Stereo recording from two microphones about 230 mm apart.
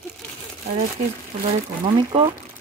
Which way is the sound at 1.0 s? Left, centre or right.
Right.